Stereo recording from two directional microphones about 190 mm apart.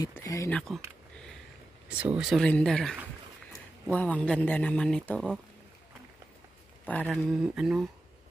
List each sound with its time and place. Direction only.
0.0 s speech: 15° left (ahead or behind)
0.5 s speech: 5° left (ahead or behind)
1.1 s a sound: 5° left (ahead or behind)
1.9 s speech: 5° right (ahead or behind)
6.9 s speech: 5° left (ahead or behind)